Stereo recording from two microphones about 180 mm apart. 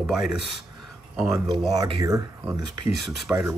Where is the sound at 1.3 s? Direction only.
25° right (ahead or behind).